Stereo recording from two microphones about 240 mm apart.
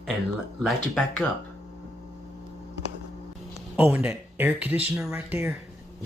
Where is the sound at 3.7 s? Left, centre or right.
Centre.